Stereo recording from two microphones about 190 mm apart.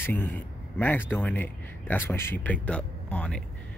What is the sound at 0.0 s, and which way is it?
A man's voice, 10° left (ahead or behind).